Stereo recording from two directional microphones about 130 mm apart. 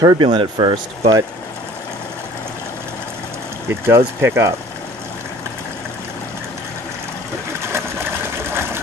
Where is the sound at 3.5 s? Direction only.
20° right (ahead or behind).